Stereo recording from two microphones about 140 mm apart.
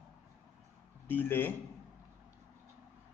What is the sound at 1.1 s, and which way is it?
Speech, 15° left (ahead or behind).